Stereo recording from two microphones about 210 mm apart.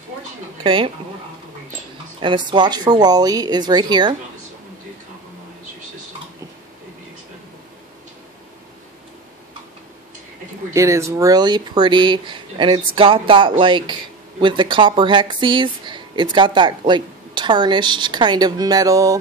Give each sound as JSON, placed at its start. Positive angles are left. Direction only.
{"t": 0.7, "sound": "speech", "side_deg": -25}
{"t": 2.1, "sound": "speech", "side_deg": -20}
{"t": 10.7, "sound": "speech", "side_deg": -15}